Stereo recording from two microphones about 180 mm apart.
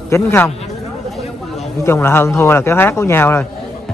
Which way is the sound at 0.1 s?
15° left (ahead or behind).